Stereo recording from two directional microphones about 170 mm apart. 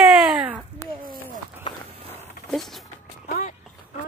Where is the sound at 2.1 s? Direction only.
Centre (ahead or behind).